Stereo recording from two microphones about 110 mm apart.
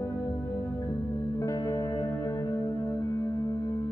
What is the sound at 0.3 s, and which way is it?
Music, 35° left (ahead or behind).